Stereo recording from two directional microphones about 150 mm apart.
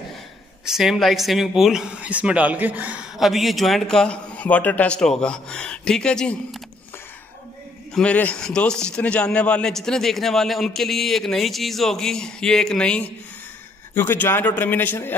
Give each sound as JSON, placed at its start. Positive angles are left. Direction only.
{"t": 0.7, "sound": "speech", "side_deg": 0}
{"t": 7.9, "sound": "speech", "side_deg": 10}